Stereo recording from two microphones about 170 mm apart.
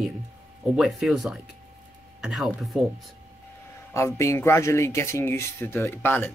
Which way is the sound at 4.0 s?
15° left (ahead or behind).